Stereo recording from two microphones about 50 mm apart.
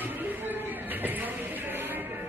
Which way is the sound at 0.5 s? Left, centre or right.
Right.